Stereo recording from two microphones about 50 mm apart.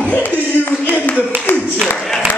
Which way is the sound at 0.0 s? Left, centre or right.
Left.